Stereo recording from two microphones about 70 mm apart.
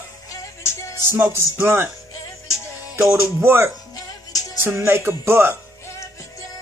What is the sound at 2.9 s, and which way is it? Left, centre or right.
Speech, right.